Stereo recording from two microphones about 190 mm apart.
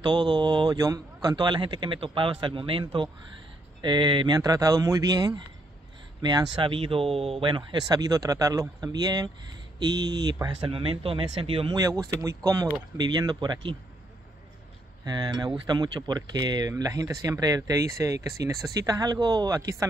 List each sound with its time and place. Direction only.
0.0 s speech: 25° right (ahead or behind)
15.0 s speech: 20° right (ahead or behind)